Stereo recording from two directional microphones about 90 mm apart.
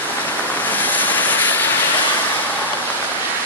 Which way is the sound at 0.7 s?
20° left (ahead or behind).